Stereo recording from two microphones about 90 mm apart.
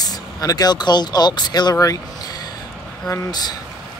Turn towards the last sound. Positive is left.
turn(degrees=50)  # may be behind; listen again after turning